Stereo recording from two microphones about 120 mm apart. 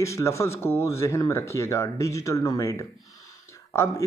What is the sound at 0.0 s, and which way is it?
Speech, 25° left (ahead or behind).